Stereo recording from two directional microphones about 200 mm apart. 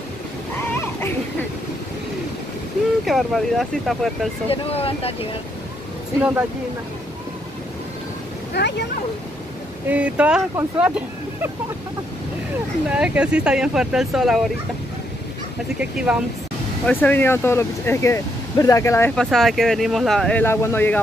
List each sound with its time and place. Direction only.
3.1 s speech: centre (ahead or behind)
4.5 s speech: 30° left (ahead or behind)
8.5 s speech: 60° left (ahead or behind)
9.8 s speech: 5° right (ahead or behind)
12.9 s speech: 5° right (ahead or behind)
15.8 s speech: 5° right (ahead or behind)
16.8 s speech: 10° left (ahead or behind)